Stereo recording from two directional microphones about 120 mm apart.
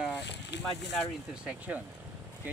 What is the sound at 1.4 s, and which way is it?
Speech, 10° right (ahead or behind).